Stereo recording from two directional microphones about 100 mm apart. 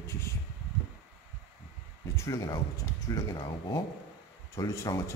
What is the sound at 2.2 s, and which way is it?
Speech, 35° left (ahead or behind).